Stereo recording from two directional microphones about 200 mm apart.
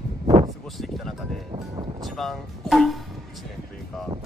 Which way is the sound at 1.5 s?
25° right (ahead or behind).